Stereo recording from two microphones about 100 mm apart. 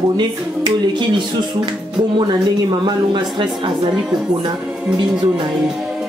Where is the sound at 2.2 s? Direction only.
50° right (ahead or behind).